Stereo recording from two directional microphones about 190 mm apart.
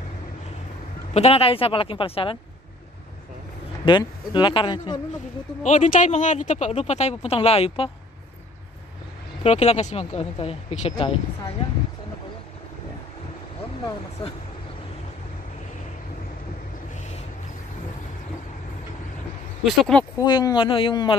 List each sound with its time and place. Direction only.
1.1 s speech: 30° left (ahead or behind)
3.8 s speech: 25° left (ahead or behind)
5.6 s speech: 40° left (ahead or behind)
9.4 s speech: 35° left (ahead or behind)
14.2 s speech: 30° left (ahead or behind)
19.6 s speech: 5° left (ahead or behind)
20.2 s speech: 20° left (ahead or behind)